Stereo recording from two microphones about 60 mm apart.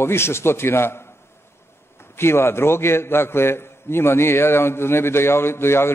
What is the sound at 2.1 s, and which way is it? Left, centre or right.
A man's voice, left.